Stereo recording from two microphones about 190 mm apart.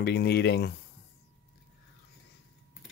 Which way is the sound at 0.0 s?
60° left (ahead or behind).